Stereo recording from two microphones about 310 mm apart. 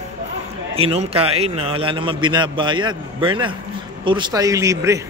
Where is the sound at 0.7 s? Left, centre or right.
Centre.